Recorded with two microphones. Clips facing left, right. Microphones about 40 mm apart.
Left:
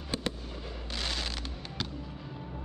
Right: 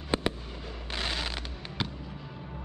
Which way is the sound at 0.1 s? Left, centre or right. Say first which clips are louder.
Right 5 dB; right.